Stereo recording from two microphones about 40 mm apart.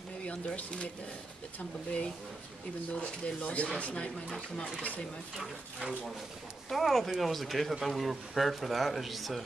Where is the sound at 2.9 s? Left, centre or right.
Left.